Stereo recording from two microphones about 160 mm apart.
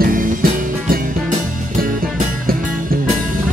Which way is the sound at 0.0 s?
60° right (ahead or behind).